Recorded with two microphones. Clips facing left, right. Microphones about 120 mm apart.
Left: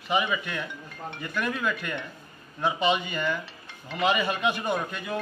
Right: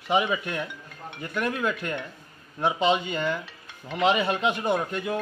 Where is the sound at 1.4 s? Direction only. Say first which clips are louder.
Right 3 dB; 25° right (ahead or behind).